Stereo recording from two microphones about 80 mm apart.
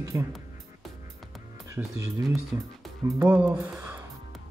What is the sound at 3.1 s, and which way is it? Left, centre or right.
Speech, centre.